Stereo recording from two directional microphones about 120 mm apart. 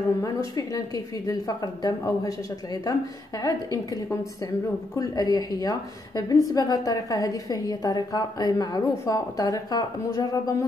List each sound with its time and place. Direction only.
0.2 s a woman's voice: 30° left (ahead or behind)